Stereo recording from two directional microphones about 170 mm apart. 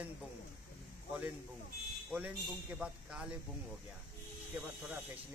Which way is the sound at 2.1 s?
5° right (ahead or behind).